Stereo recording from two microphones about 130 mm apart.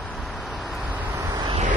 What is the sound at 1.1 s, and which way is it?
Vehicle, 25° right (ahead or behind).